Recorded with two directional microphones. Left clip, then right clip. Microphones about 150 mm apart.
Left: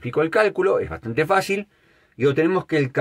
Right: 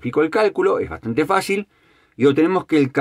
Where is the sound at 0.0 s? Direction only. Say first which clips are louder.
Right 2 dB; 25° right (ahead or behind).